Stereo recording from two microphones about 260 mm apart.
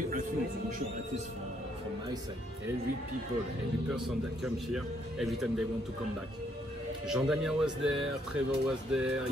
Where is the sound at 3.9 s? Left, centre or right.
Centre.